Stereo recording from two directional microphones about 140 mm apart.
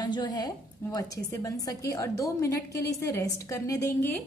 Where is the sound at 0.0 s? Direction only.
30° left (ahead or behind).